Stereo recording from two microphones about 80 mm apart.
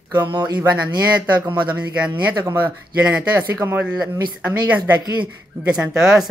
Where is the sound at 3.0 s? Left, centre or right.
Centre.